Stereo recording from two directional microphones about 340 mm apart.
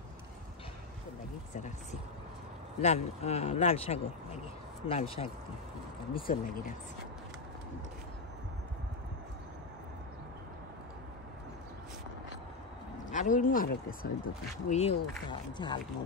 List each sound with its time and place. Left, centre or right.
2.8 s speech: centre
13.1 s speech: left